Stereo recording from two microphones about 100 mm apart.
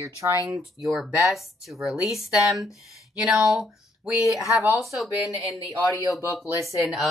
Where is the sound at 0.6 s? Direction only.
5° right (ahead or behind).